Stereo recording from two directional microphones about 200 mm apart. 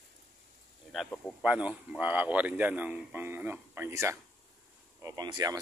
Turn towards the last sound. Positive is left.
turn(degrees=-20)  # may be behind; listen again after turning